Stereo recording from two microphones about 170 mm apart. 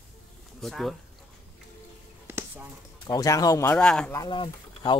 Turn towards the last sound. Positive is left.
turn(degrees=30)  # may be behind; listen again after turning